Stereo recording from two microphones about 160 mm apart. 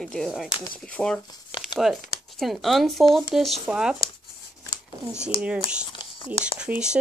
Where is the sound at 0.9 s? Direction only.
5° left (ahead or behind).